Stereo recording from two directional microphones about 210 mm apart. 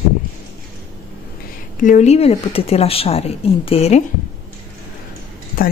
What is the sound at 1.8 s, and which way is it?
Speech, 35° left (ahead or behind).